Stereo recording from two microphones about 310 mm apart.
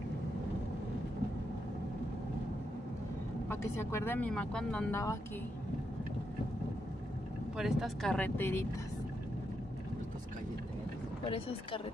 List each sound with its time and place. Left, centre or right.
3.4 s speech: centre
7.5 s speech: centre
11.2 s speech: centre